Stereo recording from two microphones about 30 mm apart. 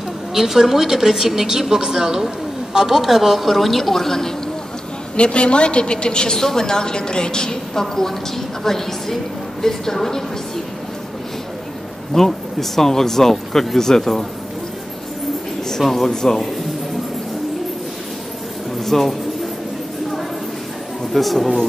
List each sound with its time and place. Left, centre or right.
0.3 s a woman's voice: centre
5.1 s a woman's voice: left
6.3 s a woman's voice: centre
7.7 s a woman's voice: centre
12.1 s a woman's voice: centre
15.9 s a woman's voice: centre
18.9 s a man's voice: centre
21.1 s a woman's voice: centre